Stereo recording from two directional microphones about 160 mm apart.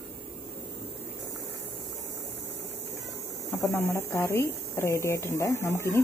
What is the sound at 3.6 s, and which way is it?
Speech, 15° left (ahead or behind).